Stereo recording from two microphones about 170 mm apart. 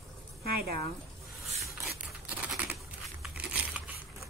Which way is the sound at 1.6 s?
Centre (ahead or behind).